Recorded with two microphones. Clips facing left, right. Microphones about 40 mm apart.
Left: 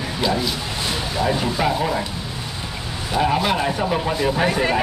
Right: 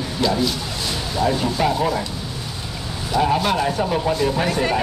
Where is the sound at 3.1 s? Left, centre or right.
Centre.